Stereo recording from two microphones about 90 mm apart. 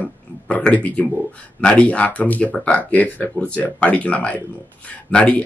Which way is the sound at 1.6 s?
15° left (ahead or behind).